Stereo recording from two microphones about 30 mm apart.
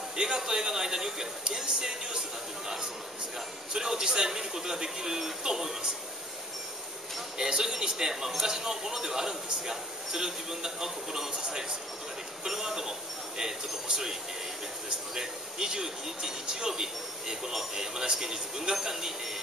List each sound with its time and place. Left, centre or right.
0.1 s a man's voice: right
3.7 s a man's voice: centre
7.3 s a man's voice: right
15.1 s a man's voice: right